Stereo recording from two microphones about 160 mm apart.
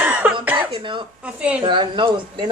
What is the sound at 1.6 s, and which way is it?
Speech, 30° right (ahead or behind).